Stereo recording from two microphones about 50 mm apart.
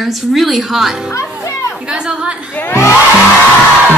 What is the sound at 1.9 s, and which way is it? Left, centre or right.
Speech, centre.